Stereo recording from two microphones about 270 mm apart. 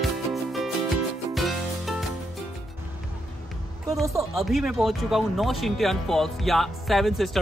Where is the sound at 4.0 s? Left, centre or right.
Centre.